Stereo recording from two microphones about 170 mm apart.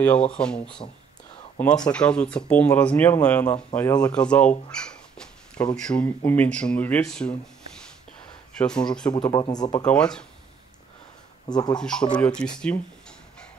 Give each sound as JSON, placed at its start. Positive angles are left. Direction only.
{"t": 0.0, "sound": "speech", "side_deg": 5}
{"t": 9.3, "sound": "speech", "side_deg": 25}
{"t": 9.8, "sound": "speech", "side_deg": 5}
{"t": 11.4, "sound": "speech", "side_deg": 25}
{"t": 11.8, "sound": "speech", "side_deg": 5}